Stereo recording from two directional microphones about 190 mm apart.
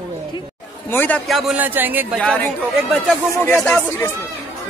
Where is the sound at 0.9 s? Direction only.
10° left (ahead or behind).